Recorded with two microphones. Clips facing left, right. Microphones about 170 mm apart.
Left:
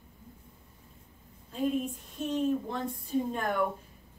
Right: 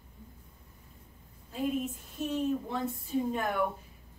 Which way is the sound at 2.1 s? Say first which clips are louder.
Left 2 dB; 5° right (ahead or behind).